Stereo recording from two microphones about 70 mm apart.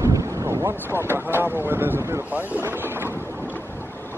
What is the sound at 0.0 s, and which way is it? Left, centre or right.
Speech, right.